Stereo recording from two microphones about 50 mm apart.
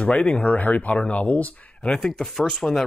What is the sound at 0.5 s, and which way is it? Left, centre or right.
Speech, left.